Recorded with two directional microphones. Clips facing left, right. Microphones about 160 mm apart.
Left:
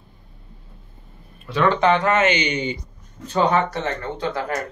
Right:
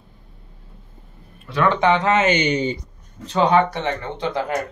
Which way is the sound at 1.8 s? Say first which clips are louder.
Right 2 dB; 20° right (ahead or behind).